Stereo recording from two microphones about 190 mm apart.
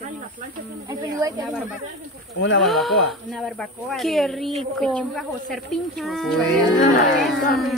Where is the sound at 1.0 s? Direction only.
20° right (ahead or behind).